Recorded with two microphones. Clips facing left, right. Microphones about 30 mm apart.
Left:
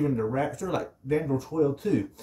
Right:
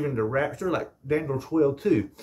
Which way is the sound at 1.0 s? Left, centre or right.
Right.